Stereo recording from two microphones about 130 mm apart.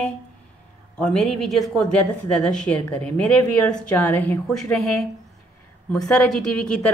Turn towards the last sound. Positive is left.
turn(degrees=5)  # may be behind; listen again after turning